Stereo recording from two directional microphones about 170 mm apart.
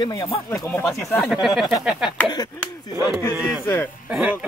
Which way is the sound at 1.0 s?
15° left (ahead or behind).